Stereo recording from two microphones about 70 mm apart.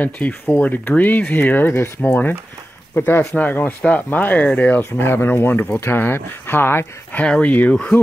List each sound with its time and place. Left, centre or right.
0.0 s speech: left
7.2 s speech: centre